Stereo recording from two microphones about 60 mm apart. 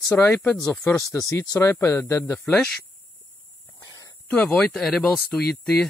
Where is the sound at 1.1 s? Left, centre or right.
Left.